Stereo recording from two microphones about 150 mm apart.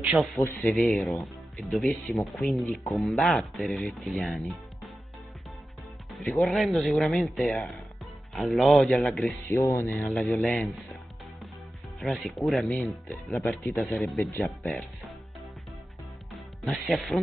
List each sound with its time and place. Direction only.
0.1 s speech: centre (ahead or behind)
6.3 s speech: centre (ahead or behind)
9.5 s speech: 20° left (ahead or behind)
10.0 s speech: centre (ahead or behind)
12.0 s speech: centre (ahead or behind)
12.6 s speech: 15° left (ahead or behind)
13.3 s speech: centre (ahead or behind)
16.6 s speech: centre (ahead or behind)